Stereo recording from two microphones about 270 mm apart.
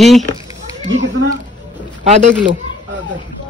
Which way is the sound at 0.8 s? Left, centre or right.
Right.